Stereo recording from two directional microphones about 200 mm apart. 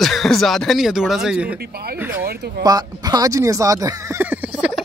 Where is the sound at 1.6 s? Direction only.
50° right (ahead or behind).